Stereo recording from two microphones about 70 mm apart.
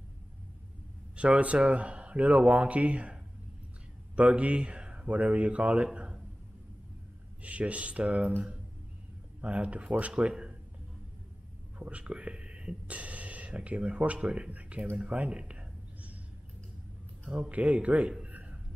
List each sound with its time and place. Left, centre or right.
1.1 s speech: centre
7.4 s speech: centre
9.4 s speech: centre
11.8 s speech: centre
15.0 s a sound: centre
17.2 s speech: centre
18.2 s a sound: right